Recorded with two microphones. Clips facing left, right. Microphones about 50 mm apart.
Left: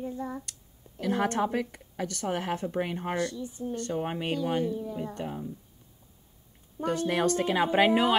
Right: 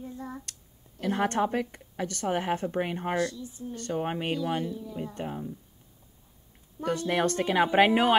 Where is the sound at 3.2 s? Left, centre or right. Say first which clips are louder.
Left 3 dB; left.